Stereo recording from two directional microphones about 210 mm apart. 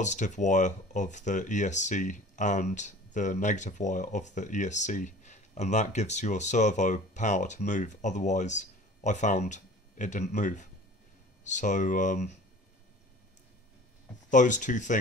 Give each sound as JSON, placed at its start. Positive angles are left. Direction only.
{"t": 0.0, "sound": "speech", "side_deg": 35}
{"t": 14.3, "sound": "speech", "side_deg": 35}